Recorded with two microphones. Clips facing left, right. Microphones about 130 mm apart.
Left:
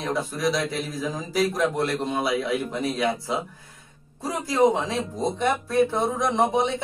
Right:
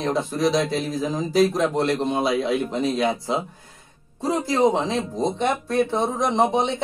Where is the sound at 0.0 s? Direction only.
25° right (ahead or behind).